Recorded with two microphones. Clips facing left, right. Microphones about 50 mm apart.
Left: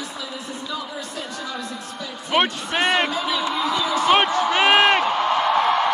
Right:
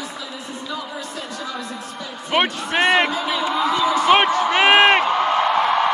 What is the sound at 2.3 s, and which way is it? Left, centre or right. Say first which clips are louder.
A man's voice: right 1 dB; centre.